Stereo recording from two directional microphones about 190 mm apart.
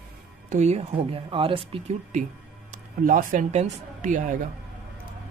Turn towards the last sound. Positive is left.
turn(degrees=-40)  # may be behind; listen again after turning